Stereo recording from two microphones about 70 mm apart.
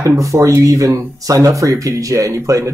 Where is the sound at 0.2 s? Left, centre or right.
Right.